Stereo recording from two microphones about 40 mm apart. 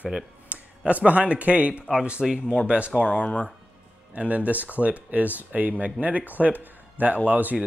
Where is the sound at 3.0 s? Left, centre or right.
Left.